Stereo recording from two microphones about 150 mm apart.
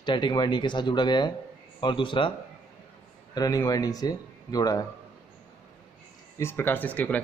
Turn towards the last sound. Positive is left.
turn(degrees=10)  # may be behind; listen again after turning